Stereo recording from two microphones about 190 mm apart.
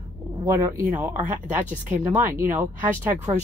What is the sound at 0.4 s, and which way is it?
A woman's voice, 15° right (ahead or behind).